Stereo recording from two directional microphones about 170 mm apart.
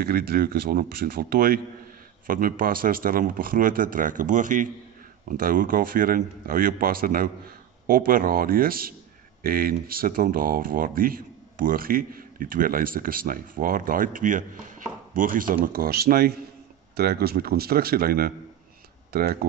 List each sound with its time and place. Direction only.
0.0 s speech: 65° right (ahead or behind)